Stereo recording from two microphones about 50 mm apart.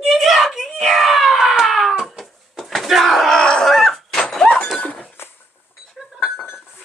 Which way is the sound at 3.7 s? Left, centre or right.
Centre.